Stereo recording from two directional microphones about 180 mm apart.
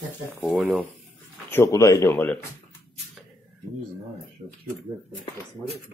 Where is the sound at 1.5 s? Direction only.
15° left (ahead or behind).